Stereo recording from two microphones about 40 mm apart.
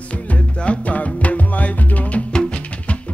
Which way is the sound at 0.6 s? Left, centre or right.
Left.